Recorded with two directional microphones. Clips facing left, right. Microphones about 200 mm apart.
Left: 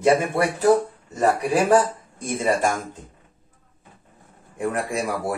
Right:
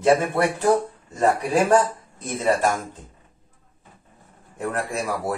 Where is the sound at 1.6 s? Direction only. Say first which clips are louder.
Left 1 dB; 10° left (ahead or behind).